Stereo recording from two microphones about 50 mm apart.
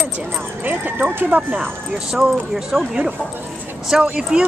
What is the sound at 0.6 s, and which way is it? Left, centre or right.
Speech, right.